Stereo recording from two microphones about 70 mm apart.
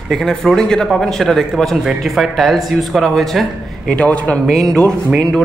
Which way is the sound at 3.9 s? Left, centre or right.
Centre.